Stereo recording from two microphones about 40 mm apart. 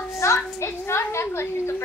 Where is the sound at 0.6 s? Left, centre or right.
Left.